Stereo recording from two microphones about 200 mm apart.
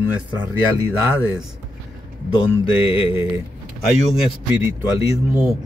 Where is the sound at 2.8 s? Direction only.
25° left (ahead or behind).